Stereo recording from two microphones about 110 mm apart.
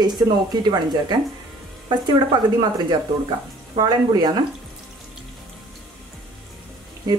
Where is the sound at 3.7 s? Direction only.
40° right (ahead or behind).